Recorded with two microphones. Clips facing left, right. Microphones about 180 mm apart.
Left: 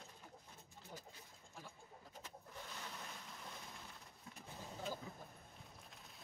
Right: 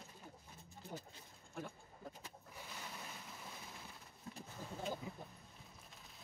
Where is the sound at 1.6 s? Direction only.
55° right (ahead or behind).